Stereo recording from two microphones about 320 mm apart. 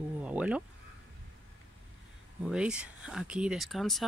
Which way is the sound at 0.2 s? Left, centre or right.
Centre.